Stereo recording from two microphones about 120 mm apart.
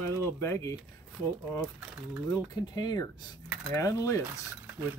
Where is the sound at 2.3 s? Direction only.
30° left (ahead or behind).